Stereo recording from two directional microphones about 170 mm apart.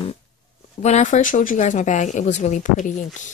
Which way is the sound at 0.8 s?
45° left (ahead or behind).